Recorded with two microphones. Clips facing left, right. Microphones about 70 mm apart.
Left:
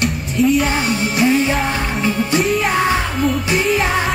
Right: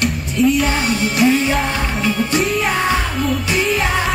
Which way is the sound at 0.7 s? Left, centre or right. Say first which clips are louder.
Even; left.